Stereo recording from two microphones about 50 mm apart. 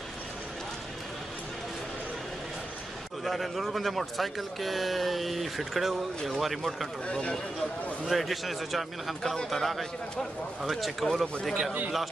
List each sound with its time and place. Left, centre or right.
3.3 s speech: centre
7.1 s a man's voice: left
8.1 s speech: centre